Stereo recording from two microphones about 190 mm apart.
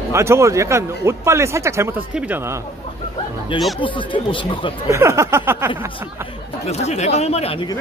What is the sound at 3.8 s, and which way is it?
Speech, 25° left (ahead or behind).